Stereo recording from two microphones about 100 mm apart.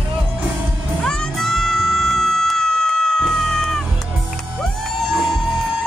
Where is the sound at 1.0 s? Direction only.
5° left (ahead or behind).